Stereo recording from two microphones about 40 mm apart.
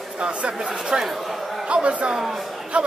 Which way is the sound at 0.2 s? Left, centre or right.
Right.